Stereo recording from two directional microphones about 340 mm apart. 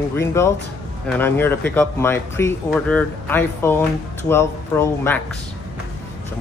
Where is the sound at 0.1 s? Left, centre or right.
Centre.